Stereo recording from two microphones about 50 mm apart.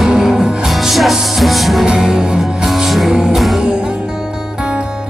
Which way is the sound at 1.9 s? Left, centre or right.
Centre.